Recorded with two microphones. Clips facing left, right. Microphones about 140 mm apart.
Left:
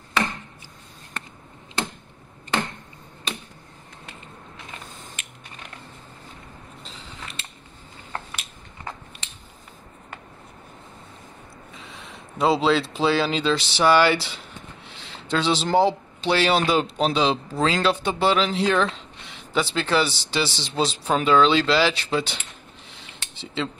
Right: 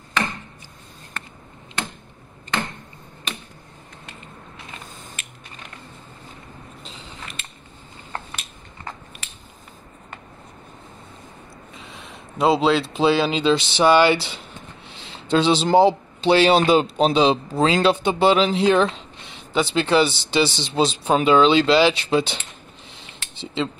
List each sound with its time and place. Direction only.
8.3 s biting: 5° left (ahead or behind)
11.9 s speech: 20° right (ahead or behind)
23.4 s speech: 20° right (ahead or behind)